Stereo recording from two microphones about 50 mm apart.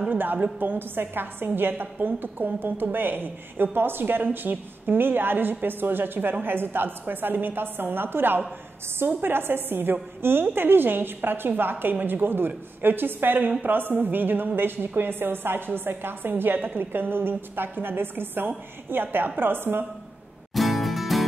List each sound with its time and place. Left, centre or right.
0.1 s a woman's voice: right
20.5 s music: centre